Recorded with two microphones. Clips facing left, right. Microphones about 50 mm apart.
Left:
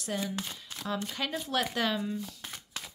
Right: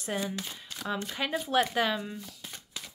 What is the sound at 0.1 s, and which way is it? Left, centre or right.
Speech, right.